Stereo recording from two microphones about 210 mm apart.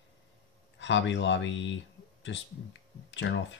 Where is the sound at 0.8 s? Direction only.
60° left (ahead or behind).